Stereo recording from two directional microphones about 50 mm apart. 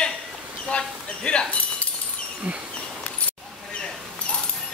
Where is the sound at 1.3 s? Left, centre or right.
Centre.